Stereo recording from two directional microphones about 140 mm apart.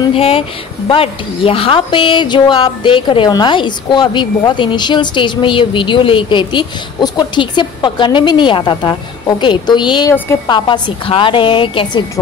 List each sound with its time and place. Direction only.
0.1 s a woman's voice: 40° left (ahead or behind)